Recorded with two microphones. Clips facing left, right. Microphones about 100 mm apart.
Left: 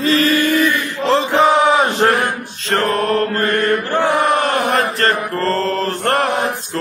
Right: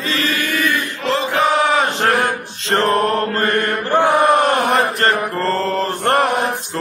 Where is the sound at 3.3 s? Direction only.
20° right (ahead or behind).